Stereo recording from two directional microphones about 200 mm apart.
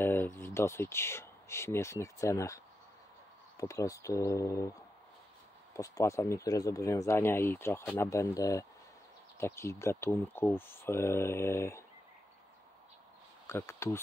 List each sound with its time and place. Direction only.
0.0 s speech: 10° left (ahead or behind)
13.5 s speech: 10° left (ahead or behind)